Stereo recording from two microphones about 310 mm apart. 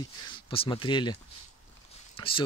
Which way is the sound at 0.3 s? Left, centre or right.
Centre.